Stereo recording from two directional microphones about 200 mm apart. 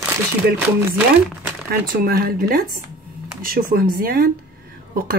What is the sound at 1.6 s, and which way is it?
Speech, 45° right (ahead or behind).